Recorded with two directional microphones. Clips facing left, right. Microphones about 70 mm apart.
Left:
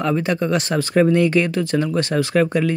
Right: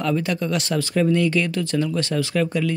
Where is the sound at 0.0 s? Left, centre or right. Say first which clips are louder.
Left 3 dB; left.